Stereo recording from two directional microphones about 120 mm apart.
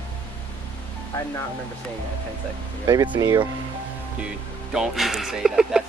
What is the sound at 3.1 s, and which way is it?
Speech, 35° right (ahead or behind).